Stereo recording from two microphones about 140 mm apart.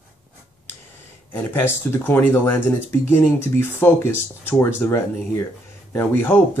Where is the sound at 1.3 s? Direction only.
15° left (ahead or behind).